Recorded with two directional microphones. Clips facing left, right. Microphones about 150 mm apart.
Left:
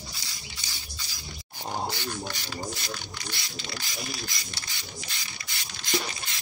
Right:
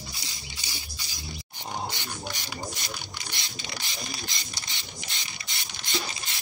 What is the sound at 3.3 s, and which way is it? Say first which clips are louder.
Mechanisms: left 2 dB; 20° right (ahead or behind).